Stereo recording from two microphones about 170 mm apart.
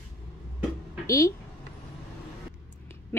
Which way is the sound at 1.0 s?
20° left (ahead or behind).